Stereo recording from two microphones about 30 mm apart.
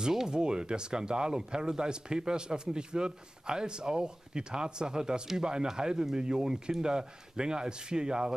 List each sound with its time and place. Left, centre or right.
0.3 s speech: right